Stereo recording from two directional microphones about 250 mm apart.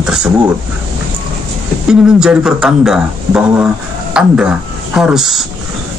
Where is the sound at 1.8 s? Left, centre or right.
Centre.